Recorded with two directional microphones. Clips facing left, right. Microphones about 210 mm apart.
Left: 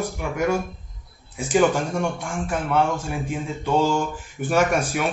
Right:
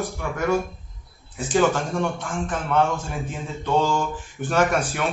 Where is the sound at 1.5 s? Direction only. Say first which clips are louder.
Left 1 dB; 10° left (ahead or behind).